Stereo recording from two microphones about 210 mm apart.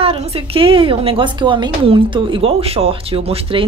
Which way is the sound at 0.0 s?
25° right (ahead or behind).